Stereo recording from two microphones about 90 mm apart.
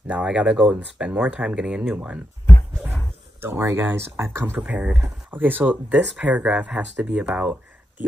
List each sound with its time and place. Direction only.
0.1 s speech: 15° right (ahead or behind)
3.3 s speech: 25° right (ahead or behind)
4.6 s speech: 15° right (ahead or behind)